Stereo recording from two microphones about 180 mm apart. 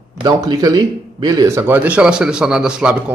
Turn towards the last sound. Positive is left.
turn(degrees=-5)  # may be behind; listen again after turning